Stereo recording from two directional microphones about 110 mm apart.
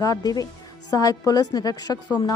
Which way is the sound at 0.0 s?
35° left (ahead or behind).